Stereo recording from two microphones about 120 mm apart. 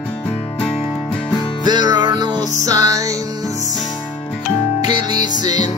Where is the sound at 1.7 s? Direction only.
35° right (ahead or behind).